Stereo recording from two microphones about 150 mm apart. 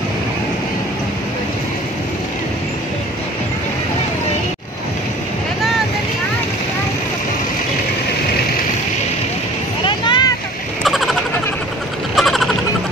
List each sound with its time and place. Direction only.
9.8 s vehicle: 30° left (ahead or behind)
10.8 s a sound: centre (ahead or behind)
12.2 s vehicle: centre (ahead or behind)